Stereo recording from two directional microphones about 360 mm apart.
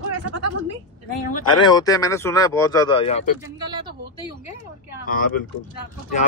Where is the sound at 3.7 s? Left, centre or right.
Centre.